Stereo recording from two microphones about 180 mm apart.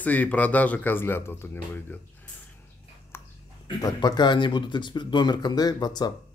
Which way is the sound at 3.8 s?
20° left (ahead or behind).